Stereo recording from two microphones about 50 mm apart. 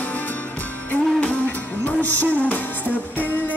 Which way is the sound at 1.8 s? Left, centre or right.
Left.